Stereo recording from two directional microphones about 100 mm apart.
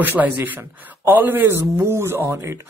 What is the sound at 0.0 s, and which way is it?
Speech, 20° right (ahead or behind).